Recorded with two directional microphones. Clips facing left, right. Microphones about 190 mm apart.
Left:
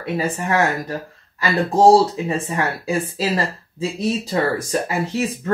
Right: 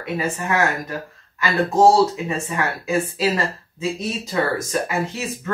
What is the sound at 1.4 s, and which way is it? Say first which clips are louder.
Speech: left 1 dB; 30° left (ahead or behind).